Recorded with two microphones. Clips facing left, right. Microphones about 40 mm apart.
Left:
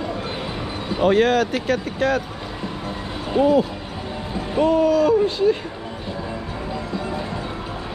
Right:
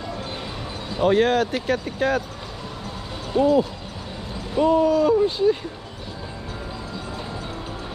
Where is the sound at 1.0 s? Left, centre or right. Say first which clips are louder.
Left 1 dB; left.